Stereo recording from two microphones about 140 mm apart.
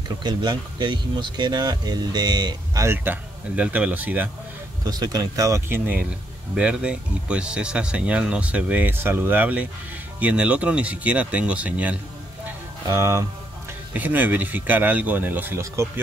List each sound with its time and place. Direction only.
0.2 s speech: 30° right (ahead or behind); by 4.3 s 10° right (ahead or behind)
4.8 s speech: 30° right (ahead or behind); by 12.0 s 10° right (ahead or behind)
12.8 s speech: 20° right (ahead or behind)